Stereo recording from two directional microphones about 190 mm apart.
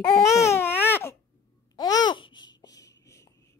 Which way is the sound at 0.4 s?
10° left (ahead or behind).